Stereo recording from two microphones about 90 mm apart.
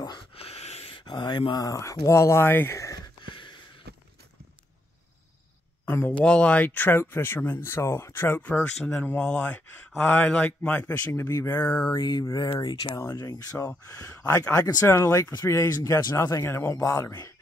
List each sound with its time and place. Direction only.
0.3 s a sound: 85° left; by 1.4 s 55° left (ahead or behind)
1.5 s speech: 45° left (ahead or behind)
5.9 s speech: 25° left (ahead or behind)
6.2 s speech: 10° left (ahead or behind)
8.9 s speech: 25° left (ahead or behind)
11.1 s speech: 30° left (ahead or behind)
12.0 s speech: 45° left (ahead or behind)
13.0 s speech: 30° left (ahead or behind)